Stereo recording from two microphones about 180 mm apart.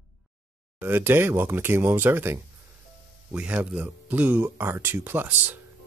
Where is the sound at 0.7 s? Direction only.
10° right (ahead or behind).